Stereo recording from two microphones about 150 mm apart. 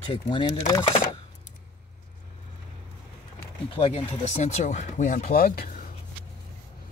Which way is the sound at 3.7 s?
35° left (ahead or behind).